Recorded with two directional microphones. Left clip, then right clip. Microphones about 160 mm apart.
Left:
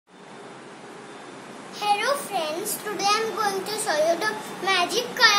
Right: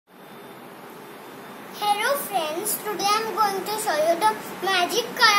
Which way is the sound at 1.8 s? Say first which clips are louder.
Even; centre (ahead or behind).